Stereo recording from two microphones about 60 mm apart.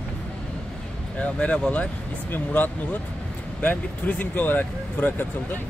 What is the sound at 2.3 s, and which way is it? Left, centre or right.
Speech, left.